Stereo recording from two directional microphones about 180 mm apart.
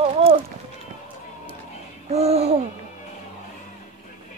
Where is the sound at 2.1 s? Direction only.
35° right (ahead or behind).